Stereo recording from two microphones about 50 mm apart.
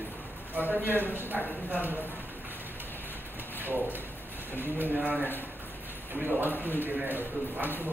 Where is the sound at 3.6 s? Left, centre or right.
Right.